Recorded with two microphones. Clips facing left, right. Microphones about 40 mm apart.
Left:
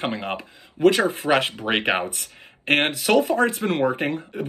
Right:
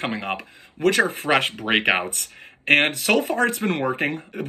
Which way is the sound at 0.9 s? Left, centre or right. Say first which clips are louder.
Right 1 dB; right.